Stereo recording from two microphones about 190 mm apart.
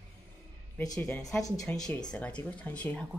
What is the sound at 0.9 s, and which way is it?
Speech, 5° left (ahead or behind).